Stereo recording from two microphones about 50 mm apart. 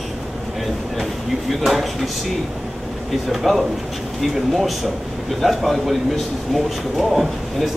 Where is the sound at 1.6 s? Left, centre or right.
Centre.